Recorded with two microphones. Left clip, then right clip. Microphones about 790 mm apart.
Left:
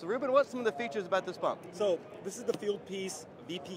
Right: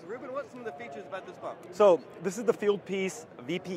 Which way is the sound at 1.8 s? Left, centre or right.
Right.